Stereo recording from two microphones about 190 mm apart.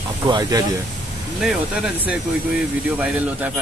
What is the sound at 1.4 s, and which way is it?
Speech, 5° right (ahead or behind).